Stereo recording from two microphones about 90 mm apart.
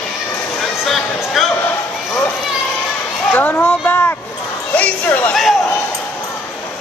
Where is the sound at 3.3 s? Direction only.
20° left (ahead or behind).